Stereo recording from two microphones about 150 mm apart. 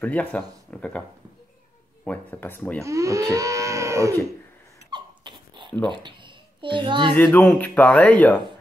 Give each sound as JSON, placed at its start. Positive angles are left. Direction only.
{"t": 0.0, "sound": "speech", "side_deg": 10}
{"t": 2.0, "sound": "speech", "side_deg": 15}
{"t": 2.8, "sound": "speech", "side_deg": -20}
{"t": 4.9, "sound": "dog", "side_deg": -30}
{"t": 5.9, "sound": "a child's voice", "side_deg": -30}
{"t": 7.2, "sound": "speech", "side_deg": 5}